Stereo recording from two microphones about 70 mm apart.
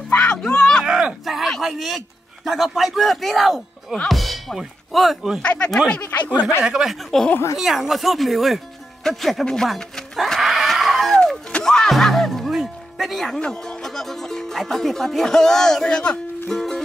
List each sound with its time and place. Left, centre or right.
0.1 s a sound: centre
0.8 s a sound: centre
1.6 s a man's voice: centre
5.4 s speech: centre
6.0 s speech: left
6.6 s speech: centre
9.0 s neigh: centre
11.6 s music: centre
13.4 s speech: centre
16.5 s music: centre